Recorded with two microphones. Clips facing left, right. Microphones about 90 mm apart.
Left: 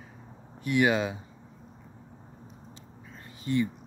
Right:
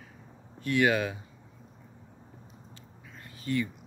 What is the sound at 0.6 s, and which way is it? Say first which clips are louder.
Speech: left 1 dB; 20° left (ahead or behind).